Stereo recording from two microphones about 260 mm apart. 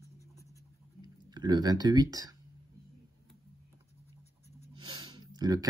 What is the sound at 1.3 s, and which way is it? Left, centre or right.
Speech, centre.